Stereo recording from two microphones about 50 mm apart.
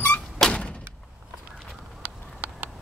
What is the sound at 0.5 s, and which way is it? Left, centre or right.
Door, left.